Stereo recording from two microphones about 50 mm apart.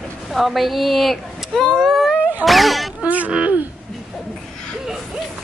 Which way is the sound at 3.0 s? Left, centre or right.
Right.